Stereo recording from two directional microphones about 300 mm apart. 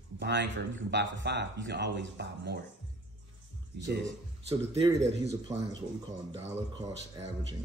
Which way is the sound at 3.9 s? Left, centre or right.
Right.